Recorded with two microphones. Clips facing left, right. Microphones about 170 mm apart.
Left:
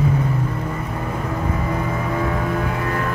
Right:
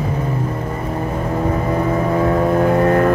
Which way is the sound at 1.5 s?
35° right (ahead or behind).